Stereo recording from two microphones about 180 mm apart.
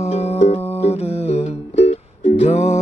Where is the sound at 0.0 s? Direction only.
35° left (ahead or behind).